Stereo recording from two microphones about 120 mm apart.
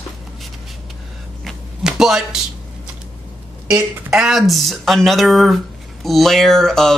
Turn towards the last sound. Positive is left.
turn(degrees=5)  # may be behind; listen again after turning